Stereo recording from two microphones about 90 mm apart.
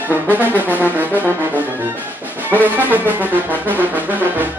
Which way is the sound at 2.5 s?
20° right (ahead or behind).